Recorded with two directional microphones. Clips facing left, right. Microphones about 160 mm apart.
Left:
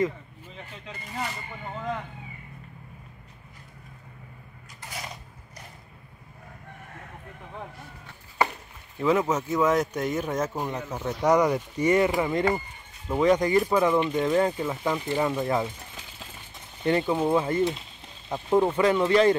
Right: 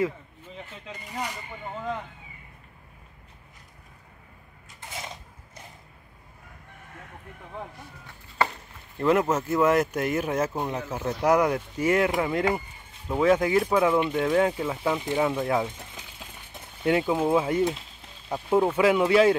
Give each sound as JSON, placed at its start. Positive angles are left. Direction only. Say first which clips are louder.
{"t": 1.1, "sound": "speech", "louder": "even", "side_deg": -15}
{"t": 4.8, "sound": "mechanisms", "louder": "even", "side_deg": -25}
{"t": 8.9, "sound": "speech", "louder": "right 1 dB", "side_deg": 0}
{"t": 16.8, "sound": "speech", "louder": "even", "side_deg": -5}